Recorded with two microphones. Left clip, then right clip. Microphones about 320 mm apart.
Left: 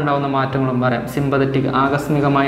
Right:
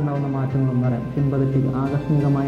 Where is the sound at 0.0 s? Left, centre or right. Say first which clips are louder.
Left 9 dB; centre.